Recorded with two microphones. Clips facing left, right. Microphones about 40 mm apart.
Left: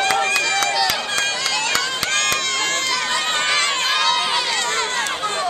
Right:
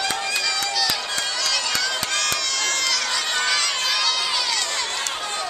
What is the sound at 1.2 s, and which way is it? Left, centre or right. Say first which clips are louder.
Run: left 3 dB; left.